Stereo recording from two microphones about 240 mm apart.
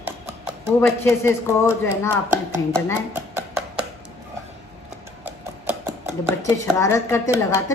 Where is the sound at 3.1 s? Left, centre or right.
Centre.